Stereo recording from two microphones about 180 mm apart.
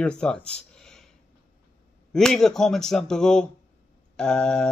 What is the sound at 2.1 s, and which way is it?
Speech, centre (ahead or behind).